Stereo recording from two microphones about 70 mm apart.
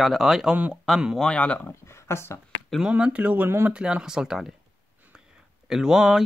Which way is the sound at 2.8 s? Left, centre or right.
Centre.